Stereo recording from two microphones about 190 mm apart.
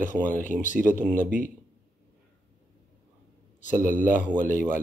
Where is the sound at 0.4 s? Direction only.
40° left (ahead or behind).